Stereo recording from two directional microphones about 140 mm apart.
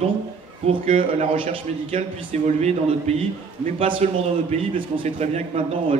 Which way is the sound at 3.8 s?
40° right (ahead or behind).